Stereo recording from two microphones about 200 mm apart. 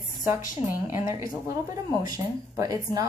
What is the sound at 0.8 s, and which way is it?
A woman's voice, 15° right (ahead or behind).